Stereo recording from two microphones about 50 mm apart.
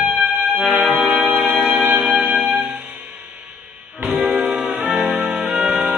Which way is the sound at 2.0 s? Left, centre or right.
Centre.